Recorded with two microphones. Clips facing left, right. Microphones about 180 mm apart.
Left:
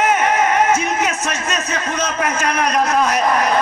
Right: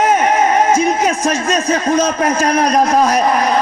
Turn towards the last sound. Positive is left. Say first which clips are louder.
# right 4 dB
turn(degrees=-35)  # may be behind; listen again after turning